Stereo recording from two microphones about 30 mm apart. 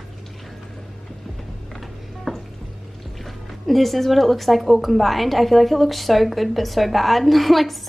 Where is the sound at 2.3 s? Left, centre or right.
Centre.